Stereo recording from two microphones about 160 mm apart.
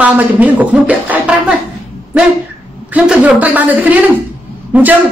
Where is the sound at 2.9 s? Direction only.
10° right (ahead or behind).